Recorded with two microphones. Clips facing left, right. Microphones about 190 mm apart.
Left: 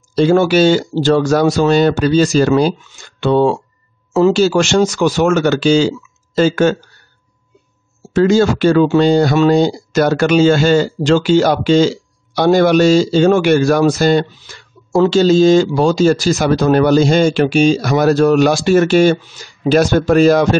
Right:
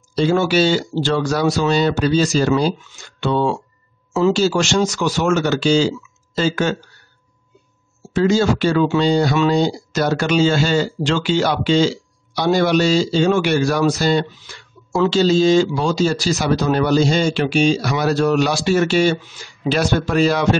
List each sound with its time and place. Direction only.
0.1 s speech: 55° left (ahead or behind)
8.1 s speech: 55° left (ahead or behind)